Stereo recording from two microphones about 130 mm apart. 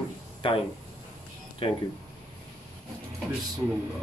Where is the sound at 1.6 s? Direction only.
45° left (ahead or behind).